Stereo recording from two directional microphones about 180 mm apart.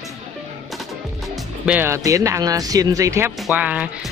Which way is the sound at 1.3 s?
10° right (ahead or behind).